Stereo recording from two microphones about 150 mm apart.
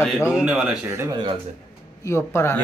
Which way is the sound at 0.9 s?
20° right (ahead or behind).